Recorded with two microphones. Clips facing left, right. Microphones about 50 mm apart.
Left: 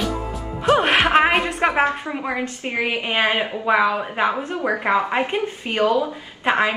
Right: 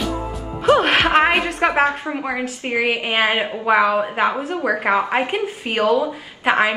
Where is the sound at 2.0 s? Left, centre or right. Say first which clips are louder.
Right 1 dB; centre.